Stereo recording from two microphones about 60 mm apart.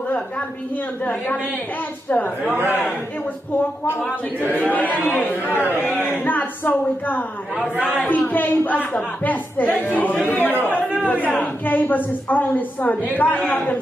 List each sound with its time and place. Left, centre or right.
1.0 s a woman's voice: left
2.5 s a man's voice: right
4.5 s a woman's voice: left
10.6 s chatter: left
11.1 s a woman's voice: left